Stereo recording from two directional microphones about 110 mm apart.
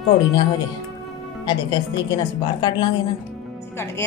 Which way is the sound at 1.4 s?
40° left (ahead or behind).